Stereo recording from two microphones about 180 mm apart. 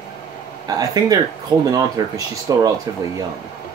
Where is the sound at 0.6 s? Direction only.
20° right (ahead or behind).